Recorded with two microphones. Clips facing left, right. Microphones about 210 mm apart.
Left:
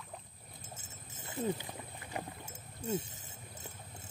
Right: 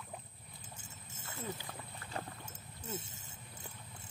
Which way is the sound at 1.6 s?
15° left (ahead or behind).